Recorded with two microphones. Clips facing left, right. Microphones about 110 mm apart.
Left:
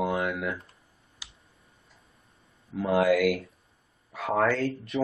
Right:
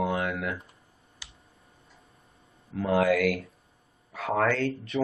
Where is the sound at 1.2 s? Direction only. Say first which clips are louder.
Even; 15° left (ahead or behind).